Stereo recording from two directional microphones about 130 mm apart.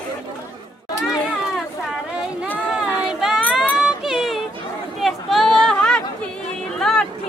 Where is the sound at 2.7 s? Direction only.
5° right (ahead or behind).